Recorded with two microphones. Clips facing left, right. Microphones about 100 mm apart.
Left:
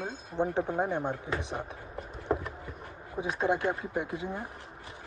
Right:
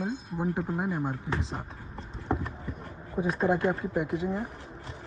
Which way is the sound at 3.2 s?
Centre (ahead or behind).